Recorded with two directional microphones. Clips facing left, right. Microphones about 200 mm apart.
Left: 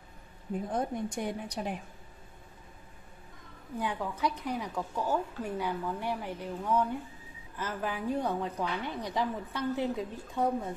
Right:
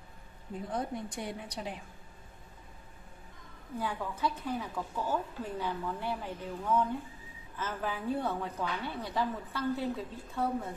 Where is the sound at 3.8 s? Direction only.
15° left (ahead or behind).